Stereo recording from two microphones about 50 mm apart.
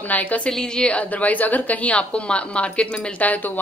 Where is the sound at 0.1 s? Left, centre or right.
Left.